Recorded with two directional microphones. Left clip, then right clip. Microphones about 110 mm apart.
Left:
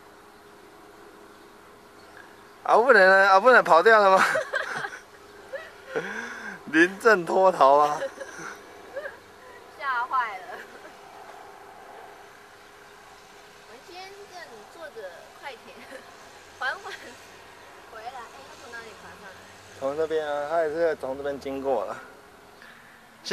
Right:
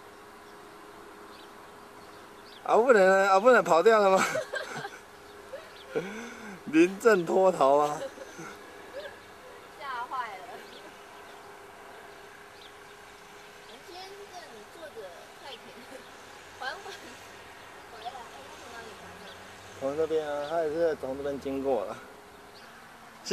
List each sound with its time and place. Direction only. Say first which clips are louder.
2.6 s speech: left 4 dB; 30° right (ahead or behind)
5.9 s a sound: left 4 dB; 30° right (ahead or behind)
7.2 s speech: left 4 dB; 30° right (ahead or behind)
9.8 s a sound: left 9 dB; 40° right (ahead or behind)
16.7 s hair dryer: left 4 dB; centre (ahead or behind)
20.0 s speech: left 2 dB; 30° right (ahead or behind)
21.0 s speech: left 3 dB; 35° right (ahead or behind)